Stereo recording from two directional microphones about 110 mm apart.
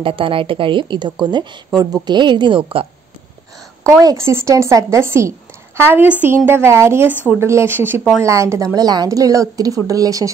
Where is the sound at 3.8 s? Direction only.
30° right (ahead or behind).